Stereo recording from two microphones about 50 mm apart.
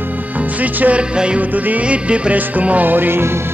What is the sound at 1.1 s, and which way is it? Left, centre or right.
Music, centre.